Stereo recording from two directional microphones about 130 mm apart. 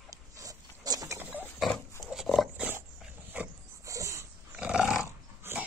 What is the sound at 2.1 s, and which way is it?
Dog, 5° right (ahead or behind).